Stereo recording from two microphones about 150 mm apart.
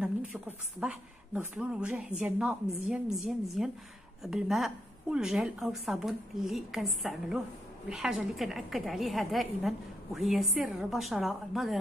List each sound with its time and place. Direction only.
0.0 s a woman's voice: 10° right (ahead or behind)